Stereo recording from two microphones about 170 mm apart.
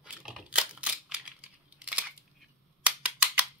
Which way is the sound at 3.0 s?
10° right (ahead or behind).